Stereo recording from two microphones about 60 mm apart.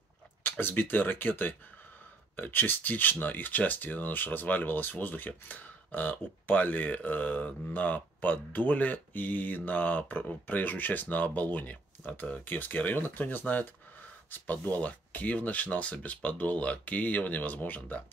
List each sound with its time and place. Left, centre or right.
0.4 s speech: left